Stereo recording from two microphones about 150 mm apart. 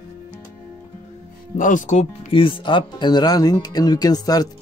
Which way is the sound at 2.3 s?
35° left (ahead or behind).